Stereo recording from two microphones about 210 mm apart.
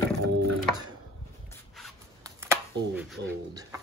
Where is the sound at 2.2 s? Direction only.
15° right (ahead or behind).